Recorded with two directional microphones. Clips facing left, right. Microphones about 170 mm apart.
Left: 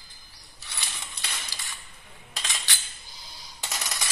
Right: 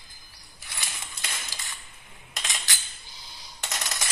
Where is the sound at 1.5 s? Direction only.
20° right (ahead or behind).